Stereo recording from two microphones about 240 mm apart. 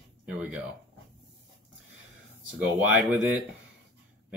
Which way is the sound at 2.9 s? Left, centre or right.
Centre.